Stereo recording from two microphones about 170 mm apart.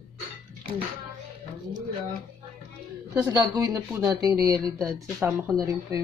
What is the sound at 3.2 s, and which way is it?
Speech, 25° right (ahead or behind).